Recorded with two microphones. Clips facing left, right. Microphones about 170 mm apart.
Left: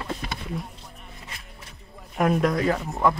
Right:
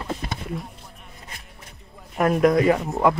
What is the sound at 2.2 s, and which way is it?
Speech, 5° right (ahead or behind).